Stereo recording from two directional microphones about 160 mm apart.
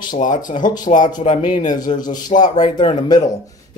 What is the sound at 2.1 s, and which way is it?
Speech, 25° left (ahead or behind).